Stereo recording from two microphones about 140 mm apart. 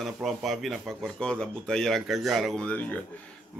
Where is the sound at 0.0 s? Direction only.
Centre (ahead or behind).